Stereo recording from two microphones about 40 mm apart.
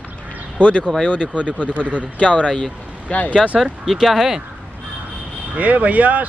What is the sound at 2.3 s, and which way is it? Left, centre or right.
Speech, left.